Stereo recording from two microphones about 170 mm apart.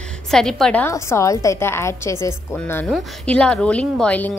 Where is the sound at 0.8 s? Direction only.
15° left (ahead or behind).